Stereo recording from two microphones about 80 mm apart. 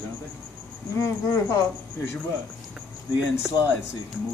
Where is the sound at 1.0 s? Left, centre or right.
Left.